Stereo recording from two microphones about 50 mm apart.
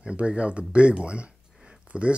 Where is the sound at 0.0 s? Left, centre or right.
Right.